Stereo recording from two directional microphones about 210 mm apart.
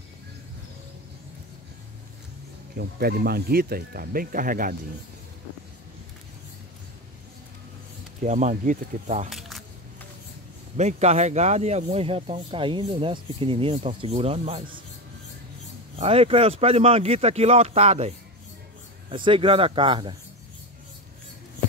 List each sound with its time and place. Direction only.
2.7 s speech: 45° right (ahead or behind)
8.2 s speech: 35° right (ahead or behind)
9.3 s a sound: centre (ahead or behind)
10.8 s speech: 30° right (ahead or behind)
16.0 s speech: 25° right (ahead or behind)